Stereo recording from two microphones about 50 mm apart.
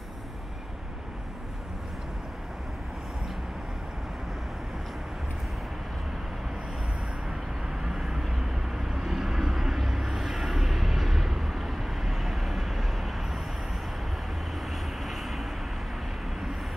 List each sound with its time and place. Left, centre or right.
7.8 s vehicle: centre
14.7 s vehicle: centre